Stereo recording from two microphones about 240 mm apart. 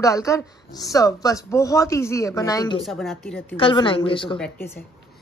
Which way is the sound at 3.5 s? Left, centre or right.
Left.